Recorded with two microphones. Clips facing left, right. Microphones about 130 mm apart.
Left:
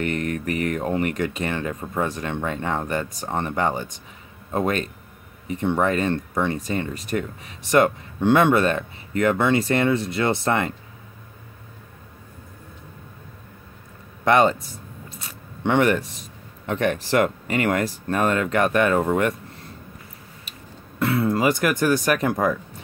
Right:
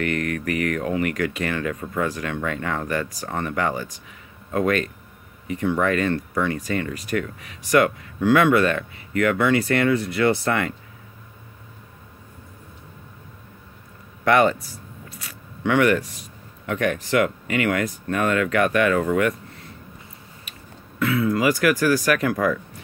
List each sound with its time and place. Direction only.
0.0 s speech: 25° left (ahead or behind)
14.2 s speech: 25° left (ahead or behind)
21.0 s speech: 35° left (ahead or behind)